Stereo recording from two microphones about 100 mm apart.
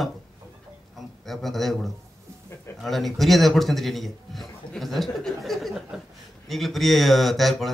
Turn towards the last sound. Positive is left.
turn(degrees=0)  # may be behind; listen again after turning